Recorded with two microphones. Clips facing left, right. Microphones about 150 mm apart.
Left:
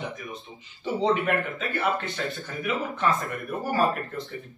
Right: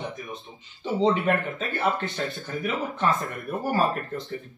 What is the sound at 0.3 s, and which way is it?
Speech, centre (ahead or behind).